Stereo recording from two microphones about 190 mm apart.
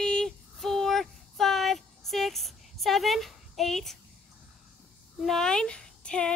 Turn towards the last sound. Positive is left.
turn(degrees=5)  # may be behind; listen again after turning